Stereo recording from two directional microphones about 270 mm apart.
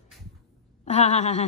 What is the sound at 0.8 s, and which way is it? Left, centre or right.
Speech, left.